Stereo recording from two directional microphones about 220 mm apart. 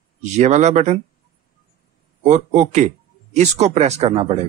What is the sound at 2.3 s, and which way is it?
A man's voice, 30° right (ahead or behind).